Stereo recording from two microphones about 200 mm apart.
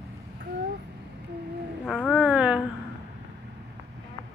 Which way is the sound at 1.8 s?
Centre (ahead or behind).